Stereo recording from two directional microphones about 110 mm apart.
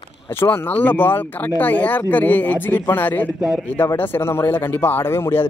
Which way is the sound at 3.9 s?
20° left (ahead or behind).